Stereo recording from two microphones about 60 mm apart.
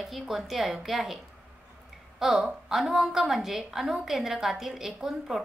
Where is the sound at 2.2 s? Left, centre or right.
Centre.